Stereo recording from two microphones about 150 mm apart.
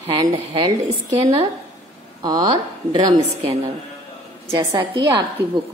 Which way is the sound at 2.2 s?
35° right (ahead or behind).